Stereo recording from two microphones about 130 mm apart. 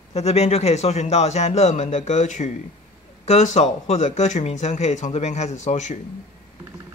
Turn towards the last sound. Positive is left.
turn(degrees=60)  # may be behind; listen again after turning